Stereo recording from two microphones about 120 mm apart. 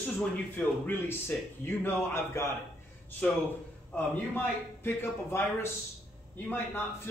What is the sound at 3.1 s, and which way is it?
A man's voice, 10° left (ahead or behind).